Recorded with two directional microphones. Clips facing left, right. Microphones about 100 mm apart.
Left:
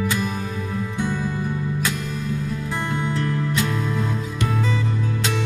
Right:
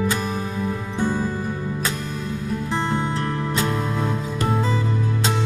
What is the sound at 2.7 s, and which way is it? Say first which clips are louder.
Music: right 2 dB; 30° right (ahead or behind).